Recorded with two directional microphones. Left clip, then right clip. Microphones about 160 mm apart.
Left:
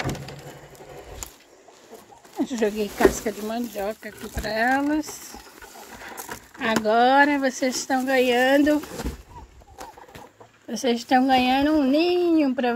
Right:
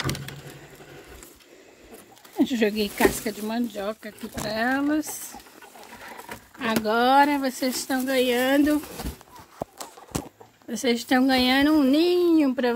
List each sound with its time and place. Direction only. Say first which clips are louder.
2.3 s speech: right 1 dB; 40° right (ahead or behind); by 5.0 s 15° right (ahead or behind)
6.2 s a sound: left 3 dB; centre (ahead or behind)
6.7 s speech: left 2 dB; 10° right (ahead or behind)
10.7 s speech: left 2 dB; 30° right (ahead or behind)